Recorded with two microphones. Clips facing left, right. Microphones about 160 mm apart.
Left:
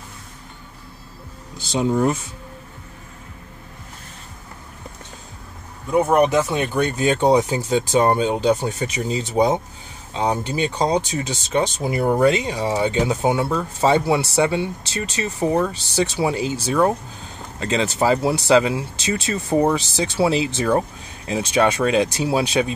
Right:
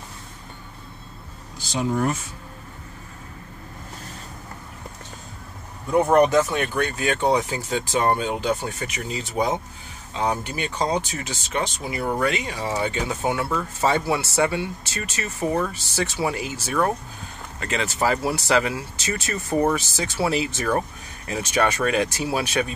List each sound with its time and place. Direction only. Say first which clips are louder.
1.7 s speech: left 4 dB; 20° left (ahead or behind)
5.9 s speech: even; 5° left (ahead or behind)
6.2 s speech: left 1 dB; 20° left (ahead or behind)
7.1 s speech: left 5 dB; 35° left (ahead or behind)
8.0 s speech: left 3 dB; 20° left (ahead or behind)
11.8 s speech: left 6 dB; 40° left (ahead or behind)
12.2 s speech: left 8 dB; 30° left (ahead or behind)
12.4 s speech: left 5 dB; 20° left (ahead or behind)